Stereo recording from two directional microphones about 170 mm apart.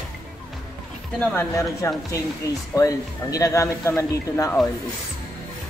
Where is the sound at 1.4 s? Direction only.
15° left (ahead or behind).